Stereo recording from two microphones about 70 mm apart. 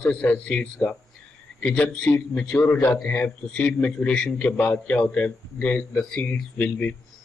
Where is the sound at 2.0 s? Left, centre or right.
Left.